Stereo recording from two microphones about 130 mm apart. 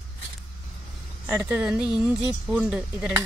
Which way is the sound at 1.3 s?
10° right (ahead or behind).